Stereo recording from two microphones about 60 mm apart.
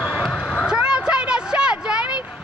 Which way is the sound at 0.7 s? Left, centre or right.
Centre.